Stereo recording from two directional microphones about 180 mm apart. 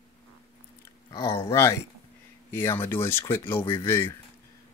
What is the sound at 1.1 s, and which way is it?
Speech, 15° left (ahead or behind).